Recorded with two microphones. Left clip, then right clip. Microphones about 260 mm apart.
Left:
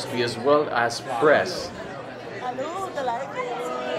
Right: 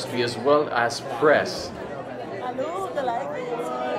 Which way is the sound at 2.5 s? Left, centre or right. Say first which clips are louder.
Even; centre.